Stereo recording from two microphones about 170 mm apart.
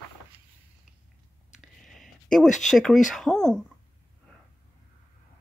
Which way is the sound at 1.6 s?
Centre (ahead or behind).